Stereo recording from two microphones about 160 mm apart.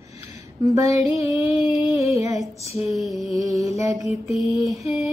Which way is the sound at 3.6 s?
20° right (ahead or behind).